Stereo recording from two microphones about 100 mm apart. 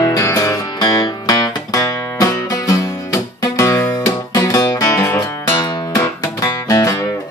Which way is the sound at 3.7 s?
20° left (ahead or behind).